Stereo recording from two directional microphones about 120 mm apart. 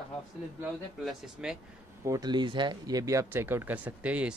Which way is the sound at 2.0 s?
30° right (ahead or behind).